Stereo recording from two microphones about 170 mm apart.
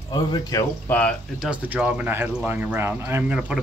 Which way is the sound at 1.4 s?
10° right (ahead or behind).